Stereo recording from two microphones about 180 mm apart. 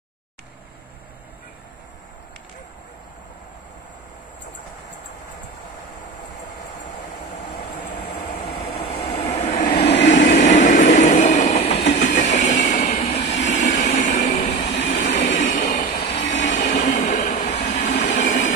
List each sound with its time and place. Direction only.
8.9 s train: 20° left (ahead or behind)
9.3 s vehicle: 40° left (ahead or behind)
9.8 s train: 75° left (ahead or behind)
10.4 s train: 45° left (ahead or behind)
11.8 s train: 80° left
12.4 s train: 40° left (ahead or behind)
13.0 s train: 35° left (ahead or behind)